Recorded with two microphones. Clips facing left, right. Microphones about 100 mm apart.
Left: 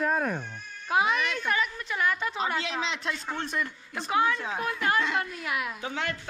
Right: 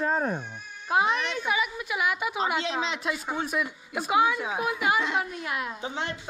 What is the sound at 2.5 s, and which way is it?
A woman's voice, centre (ahead or behind).